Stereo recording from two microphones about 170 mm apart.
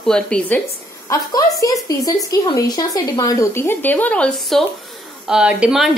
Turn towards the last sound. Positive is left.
turn(degrees=-5)  # may be behind; listen again after turning